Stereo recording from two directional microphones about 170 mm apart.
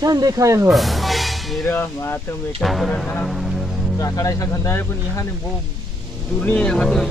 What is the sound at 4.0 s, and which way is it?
Speech, 20° left (ahead or behind).